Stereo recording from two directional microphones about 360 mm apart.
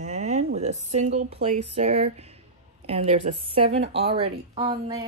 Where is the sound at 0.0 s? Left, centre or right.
Centre.